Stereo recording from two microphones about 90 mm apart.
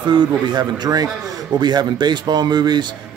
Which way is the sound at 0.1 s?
55° right (ahead or behind).